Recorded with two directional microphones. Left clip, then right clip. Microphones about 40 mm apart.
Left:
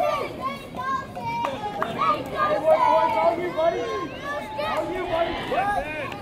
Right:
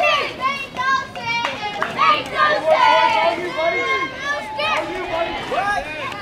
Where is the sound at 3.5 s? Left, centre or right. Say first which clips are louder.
Right 4 dB; right.